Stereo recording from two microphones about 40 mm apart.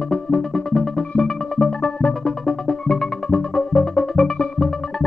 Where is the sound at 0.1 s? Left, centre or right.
Centre.